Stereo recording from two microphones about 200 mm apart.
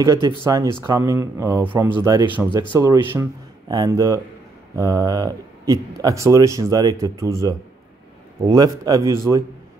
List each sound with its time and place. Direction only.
0.0 s speech: 15° right (ahead or behind)